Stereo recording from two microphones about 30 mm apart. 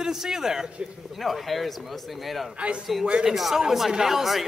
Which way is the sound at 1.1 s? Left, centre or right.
Centre.